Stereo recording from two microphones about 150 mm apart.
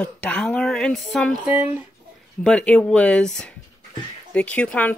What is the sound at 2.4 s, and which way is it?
Speech, 5° left (ahead or behind).